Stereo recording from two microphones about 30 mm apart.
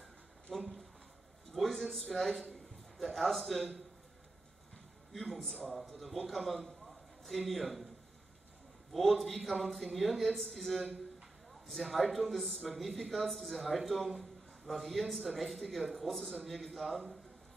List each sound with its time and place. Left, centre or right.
0.5 s a man's voice: centre
5.1 s a man's voice: centre
6.2 s a sound: centre
7.4 s a man's voice: centre
8.9 s a man's voice: centre